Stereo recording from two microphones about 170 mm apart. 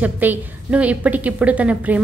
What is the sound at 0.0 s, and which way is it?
A woman's voice, 10° right (ahead or behind).